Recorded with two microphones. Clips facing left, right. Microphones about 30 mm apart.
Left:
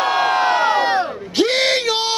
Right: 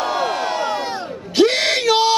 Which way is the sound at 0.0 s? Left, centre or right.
Left.